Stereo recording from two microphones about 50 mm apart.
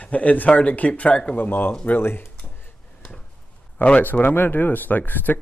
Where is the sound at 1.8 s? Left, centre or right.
Left.